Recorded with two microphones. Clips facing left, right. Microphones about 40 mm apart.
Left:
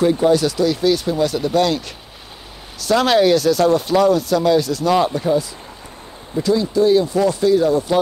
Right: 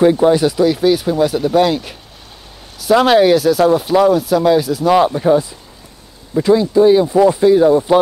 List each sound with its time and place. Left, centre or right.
0.0 s speech: right
5.2 s speech: right